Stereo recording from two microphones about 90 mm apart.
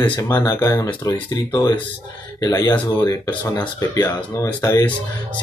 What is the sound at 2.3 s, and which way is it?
Speech, 45° left (ahead or behind).